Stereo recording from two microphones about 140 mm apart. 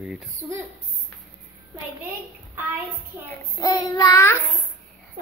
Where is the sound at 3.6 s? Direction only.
25° left (ahead or behind).